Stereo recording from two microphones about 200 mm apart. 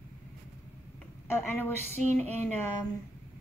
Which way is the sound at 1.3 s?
10° left (ahead or behind).